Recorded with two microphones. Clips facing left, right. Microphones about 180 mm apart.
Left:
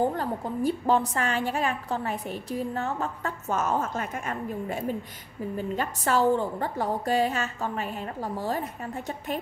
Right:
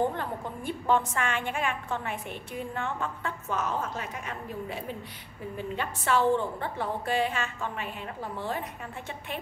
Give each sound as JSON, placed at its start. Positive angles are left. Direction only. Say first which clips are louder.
{"t": 0.0, "sound": "a woman's voice", "louder": "left 3 dB", "side_deg": 35}